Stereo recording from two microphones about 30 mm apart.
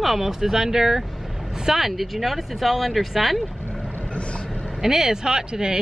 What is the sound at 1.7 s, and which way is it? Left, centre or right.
Speech, centre.